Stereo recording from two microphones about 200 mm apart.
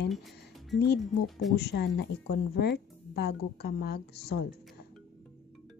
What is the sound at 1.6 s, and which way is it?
Speech, 55° left (ahead or behind).